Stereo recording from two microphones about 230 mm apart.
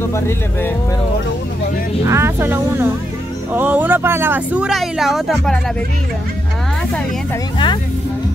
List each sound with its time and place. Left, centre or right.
0.1 s speech: centre
2.0 s speech: centre
7.5 s speech: centre